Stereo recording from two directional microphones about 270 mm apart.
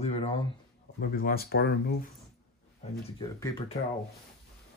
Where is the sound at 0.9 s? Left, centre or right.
Left.